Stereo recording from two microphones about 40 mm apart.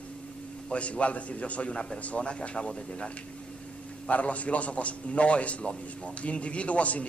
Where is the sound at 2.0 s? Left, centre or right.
Left.